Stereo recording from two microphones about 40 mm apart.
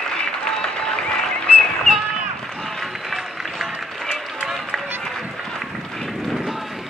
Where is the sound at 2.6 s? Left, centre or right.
Centre.